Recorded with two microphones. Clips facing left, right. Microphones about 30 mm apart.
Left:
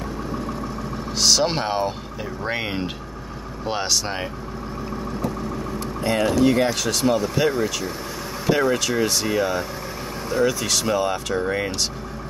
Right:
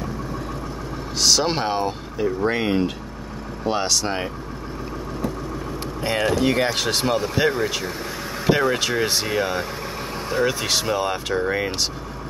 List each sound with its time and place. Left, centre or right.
1.2 s speech: centre
6.0 s speech: centre
7.1 s speech: centre